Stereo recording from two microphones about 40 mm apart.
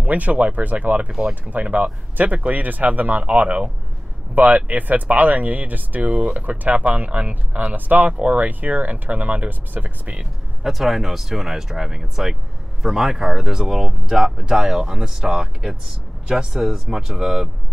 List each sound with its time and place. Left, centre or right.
0.0 s speech: right
5.9 s speech: right
10.6 s speech: centre